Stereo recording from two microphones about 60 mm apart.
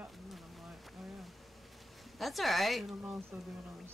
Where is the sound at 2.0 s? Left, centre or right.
Centre.